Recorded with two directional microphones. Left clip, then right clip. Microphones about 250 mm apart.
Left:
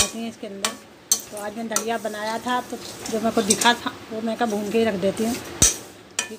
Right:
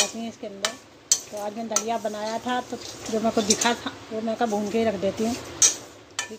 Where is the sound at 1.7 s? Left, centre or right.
Centre.